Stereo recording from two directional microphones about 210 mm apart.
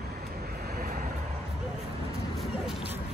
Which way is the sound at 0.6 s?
45° right (ahead or behind).